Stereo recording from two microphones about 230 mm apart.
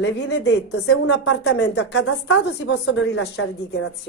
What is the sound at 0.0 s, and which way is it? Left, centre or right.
Speech, left.